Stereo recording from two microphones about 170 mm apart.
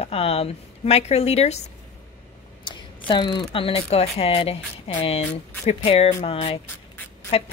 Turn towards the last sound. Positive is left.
turn(degrees=35)  # may be behind; listen again after turning